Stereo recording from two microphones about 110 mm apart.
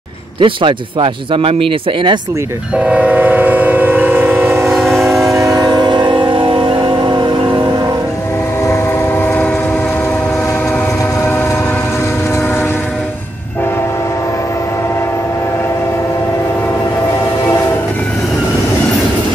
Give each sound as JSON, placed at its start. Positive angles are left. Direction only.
{"t": 0.4, "sound": "speech", "side_deg": -50}
{"t": 2.7, "sound": "train", "side_deg": -10}
{"t": 4.7, "sound": "train", "side_deg": 0}
{"t": 5.3, "sound": "train", "side_deg": -35}
{"t": 8.6, "sound": "train", "side_deg": 20}